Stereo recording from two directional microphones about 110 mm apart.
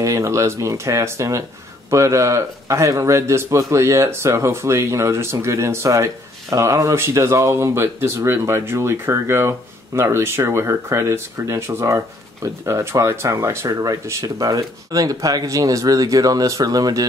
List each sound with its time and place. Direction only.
0.0 s speech: 30° right (ahead or behind)